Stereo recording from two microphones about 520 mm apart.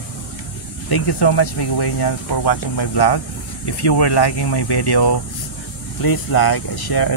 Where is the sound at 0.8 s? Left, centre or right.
Left.